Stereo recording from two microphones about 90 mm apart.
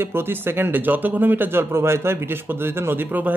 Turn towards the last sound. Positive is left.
turn(degrees=-20)  # may be behind; listen again after turning